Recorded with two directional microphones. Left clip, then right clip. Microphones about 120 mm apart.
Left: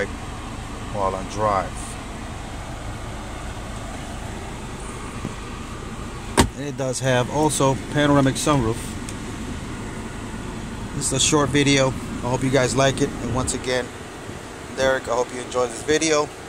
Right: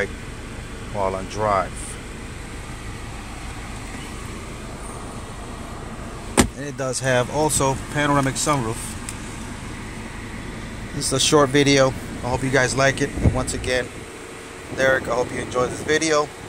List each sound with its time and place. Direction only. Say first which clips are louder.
1.0 s speech: even; 10° right (ahead or behind)
6.6 s speech: even; 15° left (ahead or behind)
11.0 s speech: right 3 dB; 5° right (ahead or behind)
12.3 s speech: even; 20° left (ahead or behind)